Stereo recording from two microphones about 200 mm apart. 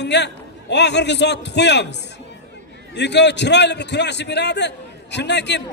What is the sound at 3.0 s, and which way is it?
A man's voice, 60° left (ahead or behind).